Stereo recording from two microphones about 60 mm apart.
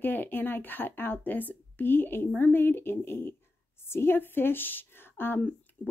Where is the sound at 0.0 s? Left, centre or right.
Left.